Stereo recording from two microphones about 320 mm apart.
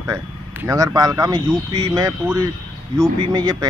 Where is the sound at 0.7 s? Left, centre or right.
Centre.